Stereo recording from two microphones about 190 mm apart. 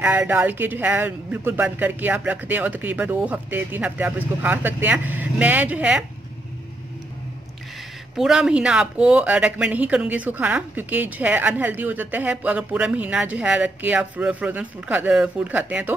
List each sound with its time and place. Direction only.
0.0 s speech: 10° right (ahead or behind)
8.2 s speech: 5° right (ahead or behind)